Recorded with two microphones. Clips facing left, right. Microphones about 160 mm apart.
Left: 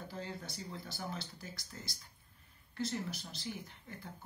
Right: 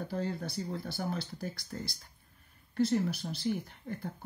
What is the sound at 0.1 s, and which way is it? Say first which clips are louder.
Speech: right 10 dB; 55° right (ahead or behind).